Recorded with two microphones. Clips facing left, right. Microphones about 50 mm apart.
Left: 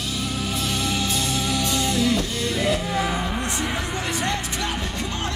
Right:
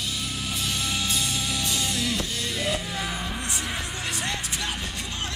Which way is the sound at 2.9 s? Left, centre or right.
Left.